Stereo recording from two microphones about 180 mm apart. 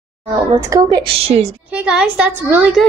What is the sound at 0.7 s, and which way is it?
Speech, 20° right (ahead or behind).